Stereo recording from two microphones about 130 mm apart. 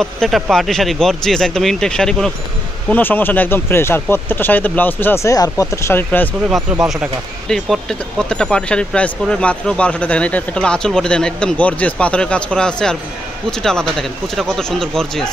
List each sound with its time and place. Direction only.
0.0 s speech: 5° left (ahead or behind)
2.9 s speech: 15° left (ahead or behind)
6.5 s speech: 5° right (ahead or behind)